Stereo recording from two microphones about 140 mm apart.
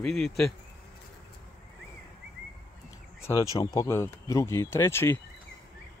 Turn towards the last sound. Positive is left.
turn(degrees=15)  # may be behind; listen again after turning